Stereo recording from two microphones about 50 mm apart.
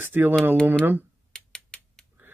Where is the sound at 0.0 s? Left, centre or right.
Right.